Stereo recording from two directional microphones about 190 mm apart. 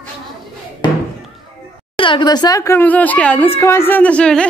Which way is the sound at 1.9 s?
25° left (ahead or behind).